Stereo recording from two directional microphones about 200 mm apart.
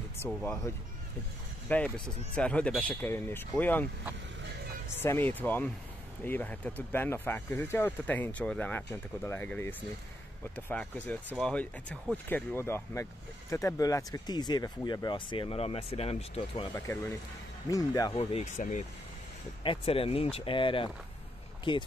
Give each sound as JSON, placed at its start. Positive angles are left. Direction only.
{"t": 0.2, "sound": "speech", "side_deg": 10}
{"t": 1.7, "sound": "speech", "side_deg": 10}
{"t": 5.0, "sound": "speech", "side_deg": 10}
{"t": 16.7, "sound": "speech", "side_deg": 10}
{"t": 18.1, "sound": "speech", "side_deg": 30}
{"t": 19.6, "sound": "speech", "side_deg": 25}